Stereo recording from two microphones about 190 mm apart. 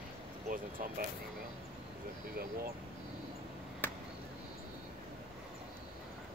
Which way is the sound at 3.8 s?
10° left (ahead or behind).